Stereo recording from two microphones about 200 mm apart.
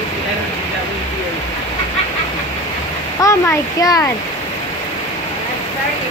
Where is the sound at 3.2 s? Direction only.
15° left (ahead or behind).